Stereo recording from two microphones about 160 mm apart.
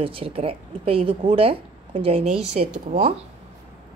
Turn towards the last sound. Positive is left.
turn(degrees=-40)  # may be behind; listen again after turning